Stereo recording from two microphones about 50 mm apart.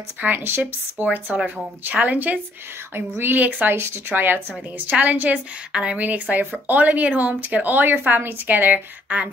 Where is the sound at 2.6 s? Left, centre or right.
Right.